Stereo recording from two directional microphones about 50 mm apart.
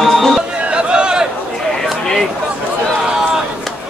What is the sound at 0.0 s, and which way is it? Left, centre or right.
Music, centre.